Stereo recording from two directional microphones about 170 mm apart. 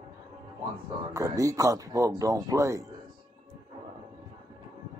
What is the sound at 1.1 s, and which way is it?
Speech, 20° right (ahead or behind).